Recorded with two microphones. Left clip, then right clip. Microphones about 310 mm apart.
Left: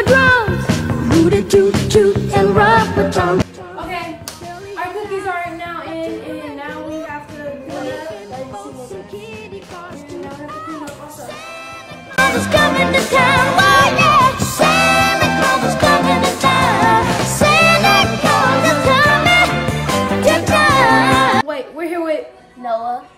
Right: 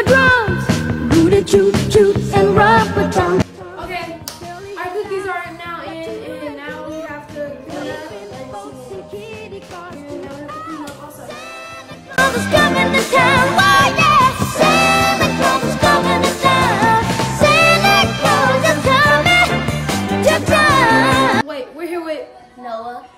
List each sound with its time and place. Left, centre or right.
0.0 s music: centre
4.7 s music: centre
12.2 s music: centre
21.5 s a sound: centre